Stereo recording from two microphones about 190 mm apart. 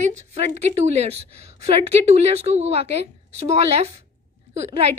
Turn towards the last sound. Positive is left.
turn(degrees=-35)  # may be behind; listen again after turning